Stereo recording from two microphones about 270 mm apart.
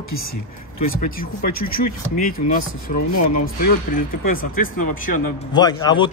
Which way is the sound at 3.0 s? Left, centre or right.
Left.